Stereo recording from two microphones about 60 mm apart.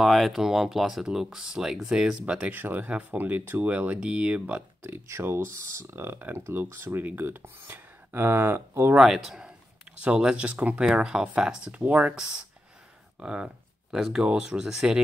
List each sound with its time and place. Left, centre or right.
0.0 s speech: centre
2.5 s speech: right
4.8 s speech: right
8.9 s speech: centre
10.0 s speech: centre
13.2 s speech: centre